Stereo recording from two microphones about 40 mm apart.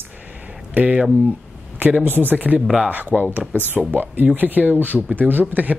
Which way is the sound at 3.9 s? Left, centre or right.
Right.